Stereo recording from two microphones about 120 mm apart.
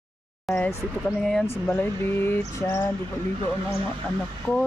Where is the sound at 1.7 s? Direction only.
15° left (ahead or behind).